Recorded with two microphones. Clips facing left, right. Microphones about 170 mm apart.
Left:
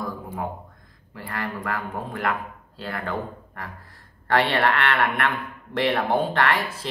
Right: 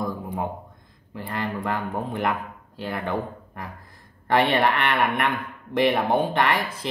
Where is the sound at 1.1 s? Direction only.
20° right (ahead or behind).